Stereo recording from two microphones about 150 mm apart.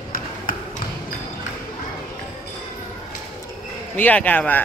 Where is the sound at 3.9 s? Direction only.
10° left (ahead or behind).